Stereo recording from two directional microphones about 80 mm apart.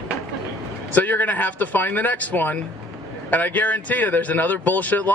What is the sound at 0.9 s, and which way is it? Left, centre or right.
A man's voice, left.